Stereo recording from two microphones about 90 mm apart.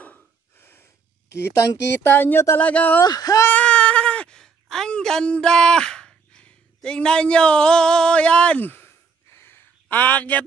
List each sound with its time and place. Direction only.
0.0 s gasp: 20° left (ahead or behind)
1.5 s speech: 30° left (ahead or behind)
3.0 s speech: 45° left (ahead or behind)
3.4 s a sound: 15° left (ahead or behind)